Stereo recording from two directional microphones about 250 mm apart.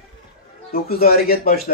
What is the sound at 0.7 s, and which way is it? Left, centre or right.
Speech, left.